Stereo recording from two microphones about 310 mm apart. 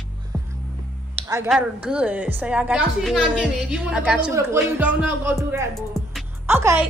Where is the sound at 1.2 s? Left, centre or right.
Centre.